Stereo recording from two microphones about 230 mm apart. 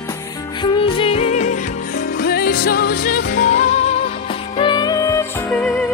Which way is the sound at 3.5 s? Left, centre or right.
Left.